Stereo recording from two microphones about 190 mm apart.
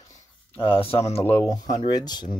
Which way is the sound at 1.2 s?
10° left (ahead or behind).